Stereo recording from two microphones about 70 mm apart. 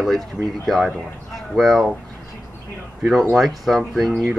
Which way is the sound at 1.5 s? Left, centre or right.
Centre.